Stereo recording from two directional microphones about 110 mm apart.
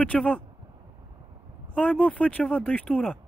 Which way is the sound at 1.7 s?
10° left (ahead or behind).